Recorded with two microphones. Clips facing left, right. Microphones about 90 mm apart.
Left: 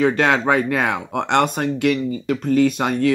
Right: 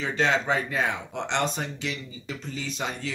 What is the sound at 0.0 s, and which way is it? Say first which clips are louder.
Speech: left 8 dB; 60° left (ahead or behind).